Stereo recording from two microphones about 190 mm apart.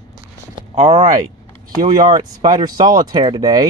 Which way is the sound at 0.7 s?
35° right (ahead or behind).